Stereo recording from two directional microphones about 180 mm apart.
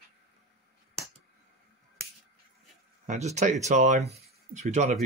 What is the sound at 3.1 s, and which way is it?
Speech, 40° right (ahead or behind).